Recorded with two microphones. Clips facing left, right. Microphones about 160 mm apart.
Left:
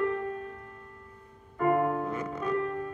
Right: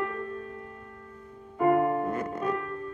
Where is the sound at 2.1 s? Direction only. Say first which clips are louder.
Right 3 dB; 50° right (ahead or behind).